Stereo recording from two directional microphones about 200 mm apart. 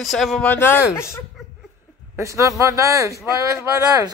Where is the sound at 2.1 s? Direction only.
15° right (ahead or behind).